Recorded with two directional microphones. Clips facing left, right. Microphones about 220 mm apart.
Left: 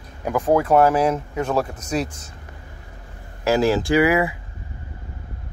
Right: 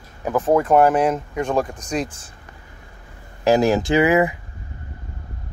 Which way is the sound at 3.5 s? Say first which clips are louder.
Right 2 dB; 15° right (ahead or behind).